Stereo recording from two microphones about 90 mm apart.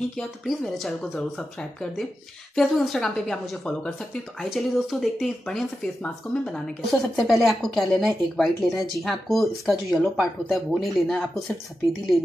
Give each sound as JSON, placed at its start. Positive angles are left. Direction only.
{"t": 0.2, "sound": "speech", "side_deg": 0}